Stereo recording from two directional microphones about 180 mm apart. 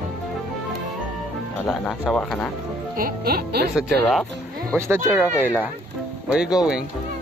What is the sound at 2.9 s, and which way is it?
Speech, 55° right (ahead or behind).